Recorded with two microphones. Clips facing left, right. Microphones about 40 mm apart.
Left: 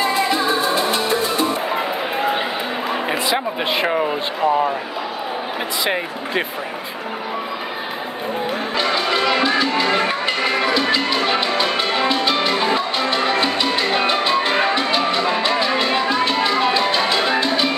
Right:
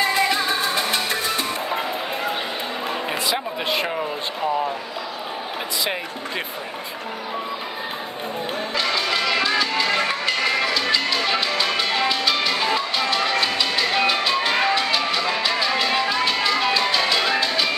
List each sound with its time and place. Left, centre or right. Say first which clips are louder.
0.0 s music: left 2 dB; centre
1.1 s music: left 4 dB; centre
8.7 s music: left 3 dB; centre